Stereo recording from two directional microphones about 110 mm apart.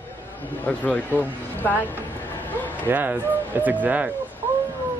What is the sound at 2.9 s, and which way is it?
Speech, 15° right (ahead or behind).